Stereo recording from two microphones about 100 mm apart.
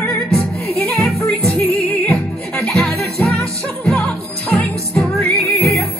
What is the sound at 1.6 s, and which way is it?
Music, 10° left (ahead or behind).